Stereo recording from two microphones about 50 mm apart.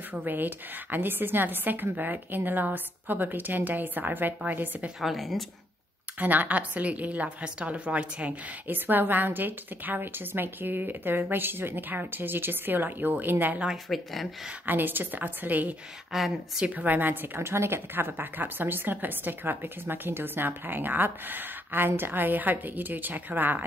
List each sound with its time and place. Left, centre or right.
0.1 s speech: right
5.0 s speech: centre
6.1 s a woman's voice: right
8.6 s a woman's voice: right
13.8 s speech: centre
14.7 s speech: right
16.1 s speech: centre
16.6 s speech: right
17.4 s speech: right